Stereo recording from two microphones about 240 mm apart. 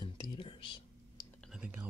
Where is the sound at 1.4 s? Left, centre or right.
Centre.